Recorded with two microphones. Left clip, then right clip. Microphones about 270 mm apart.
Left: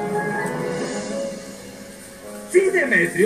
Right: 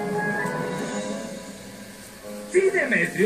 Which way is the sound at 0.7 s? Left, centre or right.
Left.